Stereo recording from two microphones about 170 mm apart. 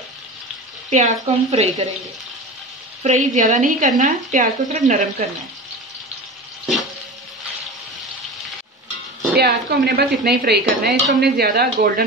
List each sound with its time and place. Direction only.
0.8 s a woman's voice: 45° right (ahead or behind)
3.0 s a woman's voice: 45° right (ahead or behind)
9.3 s dishes: 70° right (ahead or behind)